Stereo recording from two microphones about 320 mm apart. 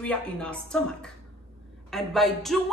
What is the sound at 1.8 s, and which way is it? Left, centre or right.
Speech, centre.